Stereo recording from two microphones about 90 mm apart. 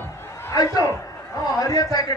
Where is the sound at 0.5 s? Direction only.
40° left (ahead or behind).